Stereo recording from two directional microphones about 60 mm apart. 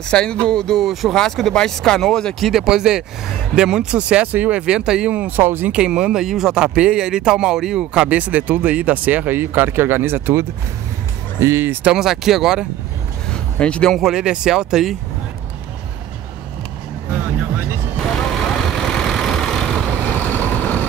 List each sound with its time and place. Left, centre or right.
0.1 s speech: centre
2.5 s speech: centre
5.1 s speech: right
5.4 s speech: right
5.7 s speech: centre; by 11.8 s right
12.0 s speech: centre
13.3 s a sound: centre
14.1 s speech: centre
17.9 s vehicle: centre
20.1 s vehicle: left